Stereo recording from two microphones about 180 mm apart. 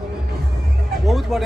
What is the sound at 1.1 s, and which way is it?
Speech, centre (ahead or behind).